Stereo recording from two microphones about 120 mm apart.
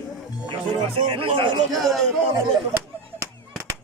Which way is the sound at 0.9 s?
50° right (ahead or behind).